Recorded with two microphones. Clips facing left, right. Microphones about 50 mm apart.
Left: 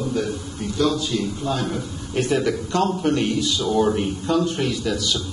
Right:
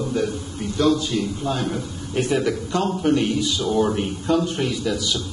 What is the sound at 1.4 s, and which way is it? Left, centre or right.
A man's voice, centre.